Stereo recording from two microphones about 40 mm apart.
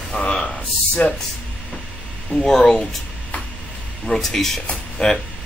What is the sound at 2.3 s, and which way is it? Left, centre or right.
Speech, centre.